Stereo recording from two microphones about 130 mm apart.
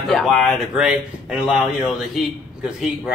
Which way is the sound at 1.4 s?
5° right (ahead or behind).